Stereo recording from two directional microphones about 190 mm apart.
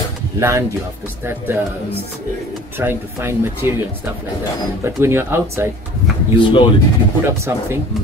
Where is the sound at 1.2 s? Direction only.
10° right (ahead or behind).